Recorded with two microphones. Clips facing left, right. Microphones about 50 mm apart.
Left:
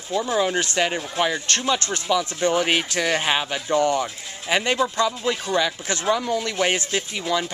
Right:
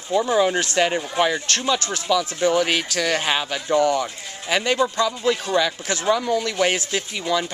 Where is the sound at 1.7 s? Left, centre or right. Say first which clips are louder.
Right 1 dB; centre.